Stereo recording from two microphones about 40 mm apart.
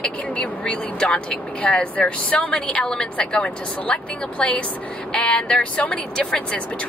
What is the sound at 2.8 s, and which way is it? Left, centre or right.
Speech, left.